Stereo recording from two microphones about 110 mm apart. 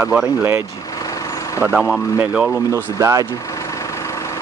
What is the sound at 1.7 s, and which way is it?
Speech, centre (ahead or behind).